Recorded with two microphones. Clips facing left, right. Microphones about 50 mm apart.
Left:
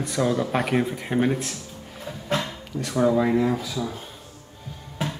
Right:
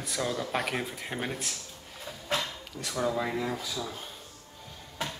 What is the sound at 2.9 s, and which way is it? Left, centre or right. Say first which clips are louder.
Speech: left 10 dB; centre.